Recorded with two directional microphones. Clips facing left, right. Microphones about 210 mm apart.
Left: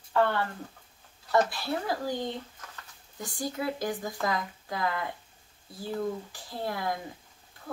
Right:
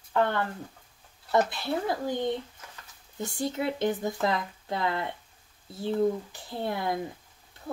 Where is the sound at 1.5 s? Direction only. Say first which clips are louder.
Right 2 dB; 20° right (ahead or behind).